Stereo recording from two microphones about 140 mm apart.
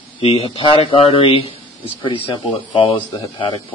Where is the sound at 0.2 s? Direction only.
45° left (ahead or behind).